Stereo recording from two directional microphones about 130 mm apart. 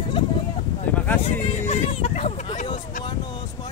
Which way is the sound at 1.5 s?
55° left (ahead or behind).